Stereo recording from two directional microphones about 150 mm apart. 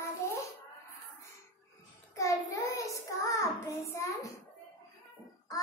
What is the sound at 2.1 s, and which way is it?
Child singing, 20° left (ahead or behind).